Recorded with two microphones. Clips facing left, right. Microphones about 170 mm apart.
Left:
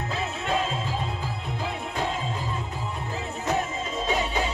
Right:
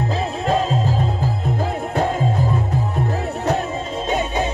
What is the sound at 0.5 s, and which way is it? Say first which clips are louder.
Music: right 8 dB; 40° right (ahead or behind).